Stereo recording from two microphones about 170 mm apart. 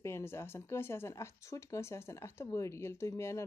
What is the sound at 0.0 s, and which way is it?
Speech, 15° left (ahead or behind).